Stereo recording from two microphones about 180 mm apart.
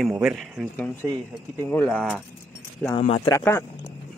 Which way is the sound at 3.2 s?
15° left (ahead or behind).